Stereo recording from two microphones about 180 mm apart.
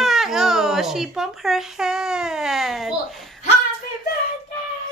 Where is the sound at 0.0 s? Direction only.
Centre (ahead or behind).